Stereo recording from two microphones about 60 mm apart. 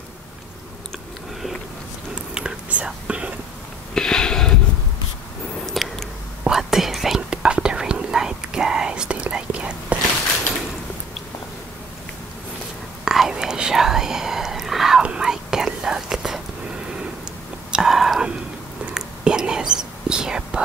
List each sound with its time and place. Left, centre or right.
2.3 s whispering: centre
3.9 s a sound: centre
5.7 s a sound: centre
6.4 s whispering: centre
7.2 s whispering: centre
13.0 s whispering: centre
17.6 s whispering: centre